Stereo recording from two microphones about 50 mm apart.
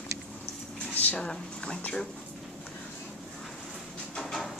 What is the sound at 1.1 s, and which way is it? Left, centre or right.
Speech, centre.